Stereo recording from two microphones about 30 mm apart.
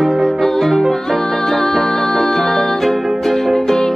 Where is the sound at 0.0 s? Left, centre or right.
Centre.